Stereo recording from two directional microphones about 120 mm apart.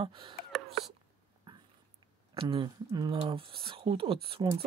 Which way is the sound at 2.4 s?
45° right (ahead or behind).